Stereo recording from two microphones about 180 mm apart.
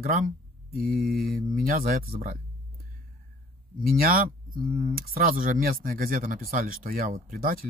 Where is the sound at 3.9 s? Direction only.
55° right (ahead or behind).